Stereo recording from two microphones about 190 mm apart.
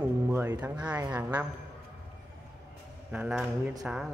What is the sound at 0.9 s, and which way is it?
Speech, 15° right (ahead or behind).